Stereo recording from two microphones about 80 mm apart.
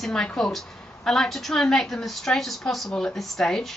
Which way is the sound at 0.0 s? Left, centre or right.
Centre.